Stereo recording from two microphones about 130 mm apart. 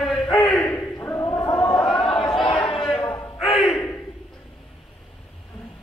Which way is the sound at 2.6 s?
35° left (ahead or behind).